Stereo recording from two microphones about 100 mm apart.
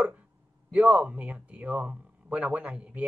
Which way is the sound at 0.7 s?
15° right (ahead or behind).